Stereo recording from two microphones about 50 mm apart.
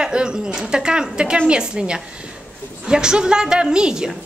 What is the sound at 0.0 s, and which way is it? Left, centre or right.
A woman's voice, centre.